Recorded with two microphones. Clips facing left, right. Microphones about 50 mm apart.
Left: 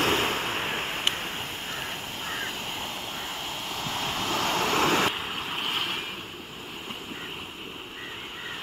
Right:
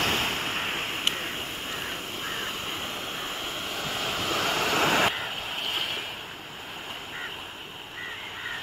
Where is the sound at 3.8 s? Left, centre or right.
Centre.